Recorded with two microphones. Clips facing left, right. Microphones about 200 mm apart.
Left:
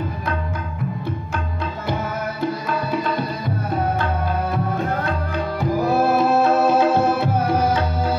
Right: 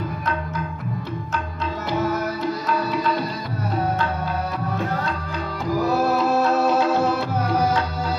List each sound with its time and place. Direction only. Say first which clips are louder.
5.6 s music: left 1 dB; 55° left (ahead or behind)